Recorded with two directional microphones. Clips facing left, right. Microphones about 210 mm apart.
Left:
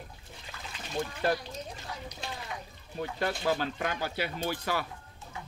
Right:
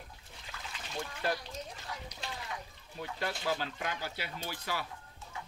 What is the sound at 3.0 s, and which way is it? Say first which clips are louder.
Speech: left 6 dB; 50° left (ahead or behind).